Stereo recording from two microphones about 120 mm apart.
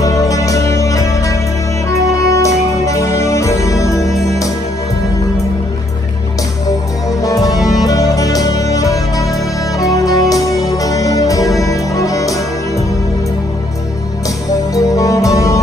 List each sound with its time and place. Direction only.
0.0 s music: 30° left (ahead or behind)
4.0 s music: centre (ahead or behind)
7.2 s music: 30° left (ahead or behind)
14.7 s music: 30° left (ahead or behind)